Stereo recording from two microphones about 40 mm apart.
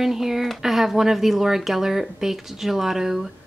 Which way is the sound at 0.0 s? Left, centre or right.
Centre.